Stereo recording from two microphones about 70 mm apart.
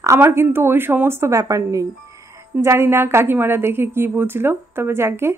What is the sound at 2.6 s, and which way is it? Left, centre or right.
Speech, right.